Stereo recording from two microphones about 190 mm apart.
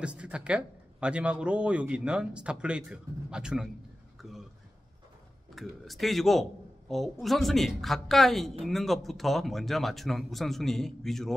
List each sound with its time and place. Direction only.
0.0 s speech: 5° right (ahead or behind)
4.2 s a sound: centre (ahead or behind)
5.5 s speech: centre (ahead or behind)